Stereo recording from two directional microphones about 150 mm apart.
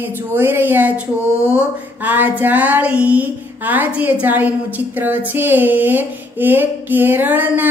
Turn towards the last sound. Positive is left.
turn(degrees=-10)  # may be behind; listen again after turning